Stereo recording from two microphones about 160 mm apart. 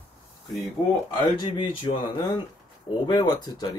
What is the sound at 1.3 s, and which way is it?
Speech, 30° left (ahead or behind).